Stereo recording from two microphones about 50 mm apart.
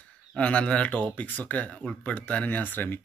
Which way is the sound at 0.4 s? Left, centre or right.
Left.